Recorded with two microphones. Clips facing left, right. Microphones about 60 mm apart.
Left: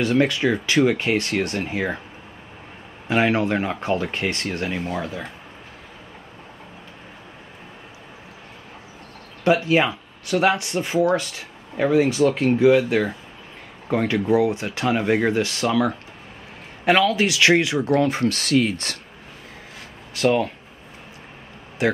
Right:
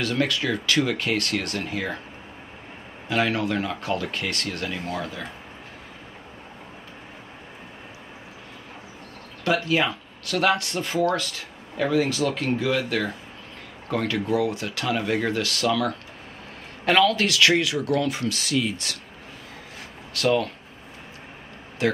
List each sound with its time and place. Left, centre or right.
0.0 s speech: left
3.1 s speech: left
9.4 s speech: left
16.8 s speech: centre; by 18.9 s left
20.2 s speech: left
21.8 s speech: left